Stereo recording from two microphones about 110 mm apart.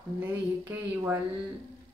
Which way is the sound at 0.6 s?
20° right (ahead or behind).